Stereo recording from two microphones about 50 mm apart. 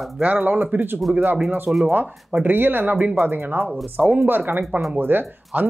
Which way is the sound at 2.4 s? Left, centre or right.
Right.